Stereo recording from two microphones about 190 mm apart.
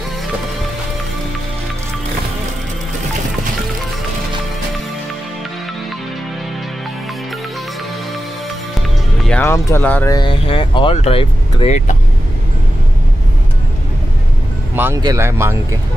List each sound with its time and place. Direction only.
9.2 s speech: 10° left (ahead or behind)
10.1 s speech: 25° left (ahead or behind)
15.0 s speech: 20° right (ahead or behind)